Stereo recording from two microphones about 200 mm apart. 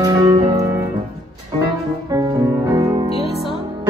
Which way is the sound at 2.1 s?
20° right (ahead or behind).